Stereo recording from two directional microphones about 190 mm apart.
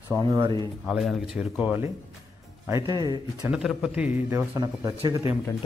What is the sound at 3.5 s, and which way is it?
A man's voice, 5° right (ahead or behind).